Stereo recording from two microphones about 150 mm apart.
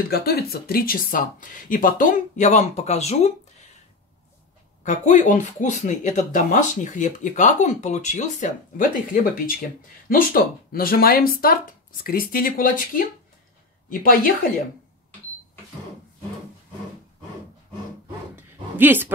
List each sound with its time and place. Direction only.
0.1 s speech: 90° left
1.7 s speech: 65° left (ahead or behind); by 3.3 s 45° left (ahead or behind)
4.8 s speech: 55° left (ahead or behind)
18.3 s a sound: 15° right (ahead or behind)